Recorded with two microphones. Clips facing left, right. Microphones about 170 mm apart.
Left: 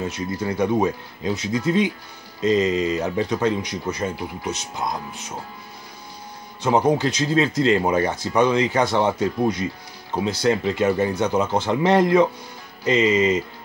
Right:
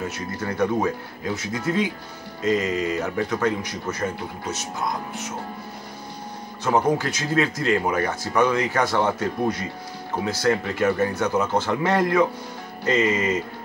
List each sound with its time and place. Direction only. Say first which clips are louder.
0.4 s speech: left 2 dB; 15° left (ahead or behind)
6.6 s speech: left 2 dB; 15° left (ahead or behind)